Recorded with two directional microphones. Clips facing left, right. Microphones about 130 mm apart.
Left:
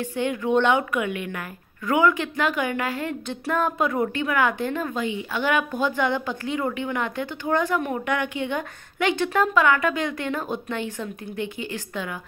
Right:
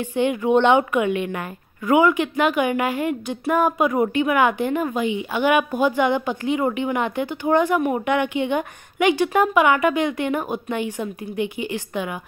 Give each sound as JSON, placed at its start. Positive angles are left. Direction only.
{"t": 0.0, "sound": "speech", "side_deg": -15}